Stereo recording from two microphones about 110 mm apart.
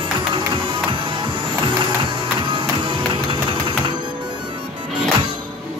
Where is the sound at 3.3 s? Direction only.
50° right (ahead or behind).